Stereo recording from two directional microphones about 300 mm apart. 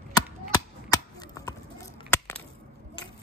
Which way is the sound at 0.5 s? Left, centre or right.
Centre.